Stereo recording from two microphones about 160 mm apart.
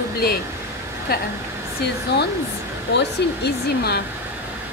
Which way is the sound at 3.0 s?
90° left.